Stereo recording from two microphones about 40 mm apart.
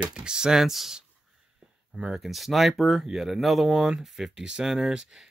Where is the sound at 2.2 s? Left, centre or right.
Centre.